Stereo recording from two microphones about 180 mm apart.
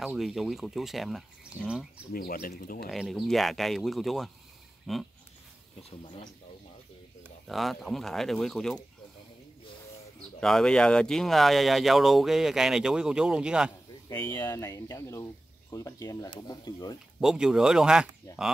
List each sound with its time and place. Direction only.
0.0 s speech: centre (ahead or behind)
1.5 s speech: 20° left (ahead or behind)
2.1 s speech: 55° left (ahead or behind)
2.9 s speech: centre (ahead or behind)
5.8 s speech: 35° left (ahead or behind)
7.4 s speech: centre (ahead or behind)
10.4 s speech: 5° left (ahead or behind)
14.0 s speech: 20° left (ahead or behind)
17.2 s speech: 5° right (ahead or behind)
18.3 s speech: 20° left (ahead or behind)